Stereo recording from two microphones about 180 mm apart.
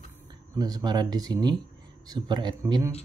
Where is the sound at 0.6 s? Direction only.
20° right (ahead or behind).